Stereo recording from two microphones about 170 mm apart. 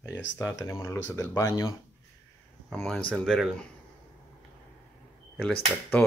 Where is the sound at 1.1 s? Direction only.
15° left (ahead or behind).